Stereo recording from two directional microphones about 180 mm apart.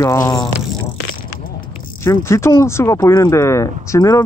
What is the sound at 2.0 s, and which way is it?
Speech, 15° left (ahead or behind).